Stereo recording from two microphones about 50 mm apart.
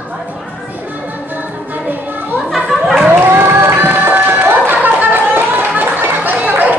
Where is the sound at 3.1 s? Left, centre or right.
Right.